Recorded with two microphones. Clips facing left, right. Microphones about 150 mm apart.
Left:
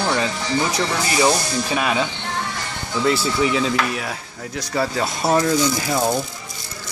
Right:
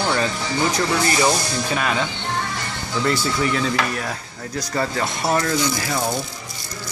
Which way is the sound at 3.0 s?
5° left (ahead or behind).